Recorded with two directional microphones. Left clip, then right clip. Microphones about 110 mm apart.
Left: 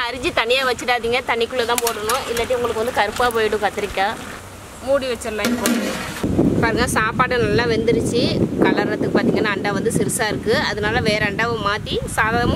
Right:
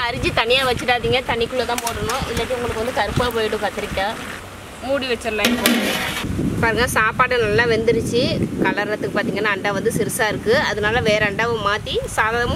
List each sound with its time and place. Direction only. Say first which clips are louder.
0.0 s speech: right 1 dB; 25° left (ahead or behind)
3.0 s speech: left 3 dB; 45° left (ahead or behind)
5.5 s speech: right 2 dB; centre (ahead or behind)
6.6 s speech: right 6 dB; 30° left (ahead or behind)